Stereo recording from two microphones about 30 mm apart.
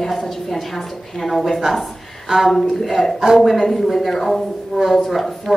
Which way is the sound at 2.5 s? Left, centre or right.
Centre.